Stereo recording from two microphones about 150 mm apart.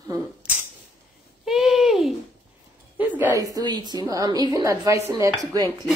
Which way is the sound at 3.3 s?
25° right (ahead or behind).